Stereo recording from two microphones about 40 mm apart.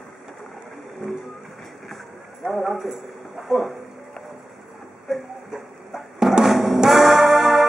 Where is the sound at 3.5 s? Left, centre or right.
Centre.